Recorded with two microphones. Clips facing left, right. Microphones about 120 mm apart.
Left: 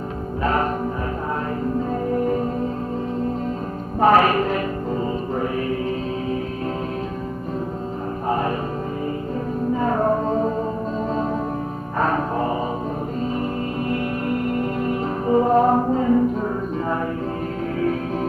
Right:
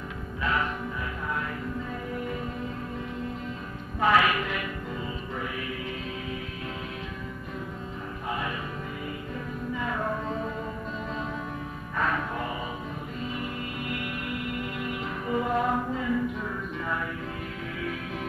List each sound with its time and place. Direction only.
0.4 s music: 40° left (ahead or behind)
1.8 s music: 40° left (ahead or behind)
4.0 s music: 40° left (ahead or behind)
8.3 s music: 40° left (ahead or behind)
9.8 s music: 40° left (ahead or behind)
12.0 s music: 40° left (ahead or behind)